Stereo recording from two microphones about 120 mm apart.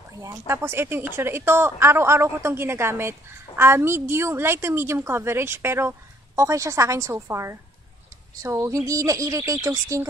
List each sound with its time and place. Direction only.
0.2 s a woman's voice: 25° right (ahead or behind)